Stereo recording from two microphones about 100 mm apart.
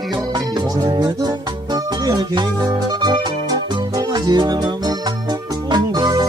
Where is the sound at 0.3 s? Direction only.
45° right (ahead or behind).